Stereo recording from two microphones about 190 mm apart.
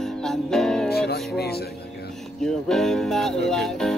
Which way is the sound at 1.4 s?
55° left (ahead or behind).